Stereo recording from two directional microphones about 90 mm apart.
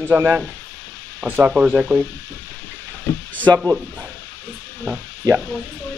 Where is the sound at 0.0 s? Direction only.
25° right (ahead or behind).